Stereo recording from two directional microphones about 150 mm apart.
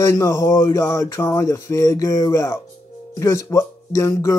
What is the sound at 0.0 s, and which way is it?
Speech, 20° left (ahead or behind).